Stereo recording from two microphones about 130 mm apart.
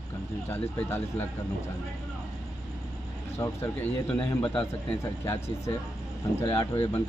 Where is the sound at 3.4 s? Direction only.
15° left (ahead or behind).